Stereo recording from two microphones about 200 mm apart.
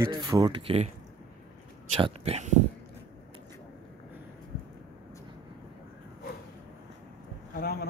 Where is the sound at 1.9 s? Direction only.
30° right (ahead or behind).